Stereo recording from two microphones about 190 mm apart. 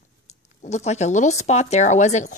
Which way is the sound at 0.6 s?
35° left (ahead or behind).